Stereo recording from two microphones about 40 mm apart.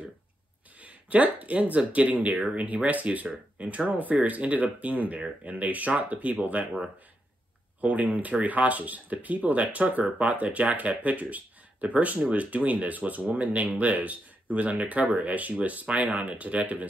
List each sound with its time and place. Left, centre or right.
0.7 s speech: right
7.8 s speech: right